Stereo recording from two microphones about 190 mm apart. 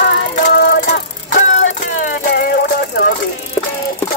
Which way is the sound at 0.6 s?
55° left (ahead or behind).